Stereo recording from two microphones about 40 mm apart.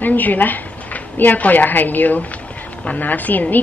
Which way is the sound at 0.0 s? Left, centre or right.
Left.